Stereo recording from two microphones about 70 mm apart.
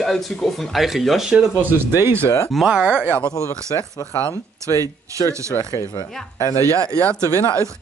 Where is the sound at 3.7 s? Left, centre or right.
Left.